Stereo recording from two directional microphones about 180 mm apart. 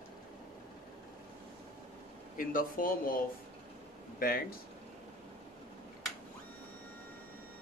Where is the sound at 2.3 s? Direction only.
50° left (ahead or behind).